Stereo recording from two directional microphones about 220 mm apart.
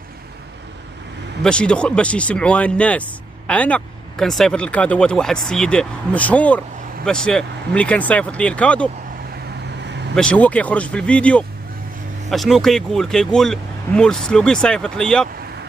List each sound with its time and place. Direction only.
1.4 s speech: 5° left (ahead or behind)
9.8 s vehicle: 50° right (ahead or behind)
10.1 s speech: 5° left (ahead or behind)